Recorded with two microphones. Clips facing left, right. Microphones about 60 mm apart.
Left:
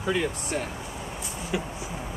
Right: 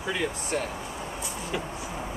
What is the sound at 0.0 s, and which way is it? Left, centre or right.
Speech, centre.